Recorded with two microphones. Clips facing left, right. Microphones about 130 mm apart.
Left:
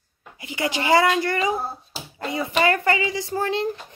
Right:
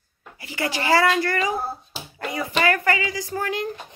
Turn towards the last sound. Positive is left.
turn(degrees=30)  # may be behind; listen again after turning